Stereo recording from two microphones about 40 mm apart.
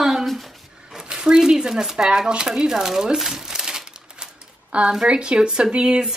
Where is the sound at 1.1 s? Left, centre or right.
Centre.